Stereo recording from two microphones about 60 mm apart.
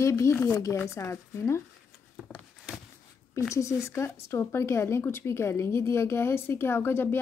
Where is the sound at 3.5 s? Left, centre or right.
Left.